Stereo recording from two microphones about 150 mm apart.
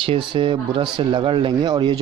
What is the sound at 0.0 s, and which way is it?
Speech, 35° right (ahead or behind).